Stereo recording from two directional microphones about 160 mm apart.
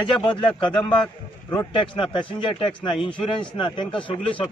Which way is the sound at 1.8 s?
30° left (ahead or behind).